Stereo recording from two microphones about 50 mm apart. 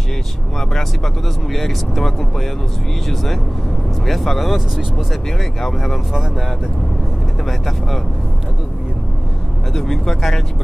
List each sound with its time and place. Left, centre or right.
0.6 s speech: centre
4.0 s speech: centre
5.4 s speech: centre
7.4 s speech: centre
9.8 s speech: centre